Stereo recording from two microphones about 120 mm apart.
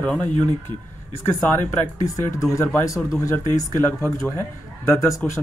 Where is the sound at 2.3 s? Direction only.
25° left (ahead or behind).